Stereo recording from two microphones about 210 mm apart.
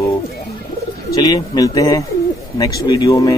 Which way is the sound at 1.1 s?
20° left (ahead or behind).